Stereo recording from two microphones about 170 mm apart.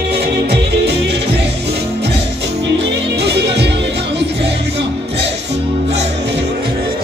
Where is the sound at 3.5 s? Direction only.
90° right.